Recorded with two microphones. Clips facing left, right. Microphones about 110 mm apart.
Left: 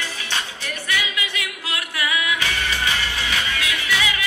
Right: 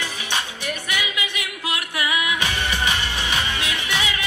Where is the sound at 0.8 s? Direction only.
20° right (ahead or behind).